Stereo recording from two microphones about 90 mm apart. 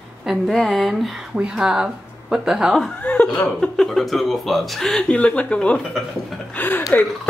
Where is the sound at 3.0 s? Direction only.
15° left (ahead or behind).